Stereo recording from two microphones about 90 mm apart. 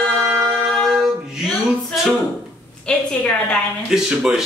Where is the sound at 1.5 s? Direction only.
5° right (ahead or behind).